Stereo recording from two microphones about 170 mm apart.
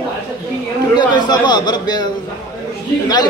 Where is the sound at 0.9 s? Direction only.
25° left (ahead or behind).